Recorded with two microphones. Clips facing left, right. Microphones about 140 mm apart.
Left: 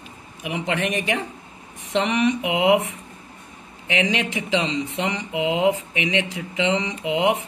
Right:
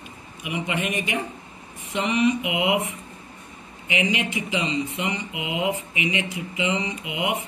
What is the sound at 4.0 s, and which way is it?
Speech, 90° left.